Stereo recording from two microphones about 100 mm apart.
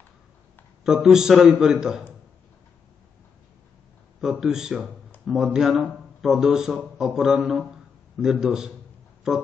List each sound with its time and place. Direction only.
0.8 s speech: 5° right (ahead or behind)
4.2 s speech: 5° right (ahead or behind)